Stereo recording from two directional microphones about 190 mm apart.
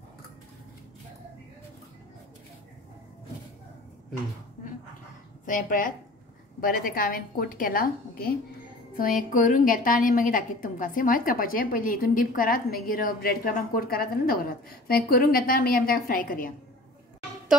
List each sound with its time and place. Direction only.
5.4 s a woman's voice: 45° left (ahead or behind)